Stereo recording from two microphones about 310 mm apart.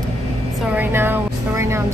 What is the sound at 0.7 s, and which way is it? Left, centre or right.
A woman's voice, centre.